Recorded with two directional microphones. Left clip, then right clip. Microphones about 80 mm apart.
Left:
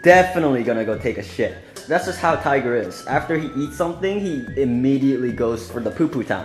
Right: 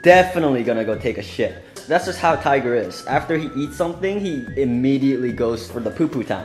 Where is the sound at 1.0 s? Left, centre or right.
Right.